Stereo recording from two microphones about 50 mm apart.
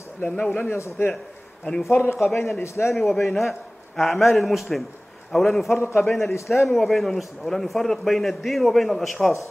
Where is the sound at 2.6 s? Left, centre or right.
Left.